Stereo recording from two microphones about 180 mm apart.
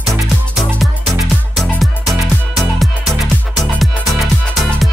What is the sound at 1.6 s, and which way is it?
Music, centre (ahead or behind).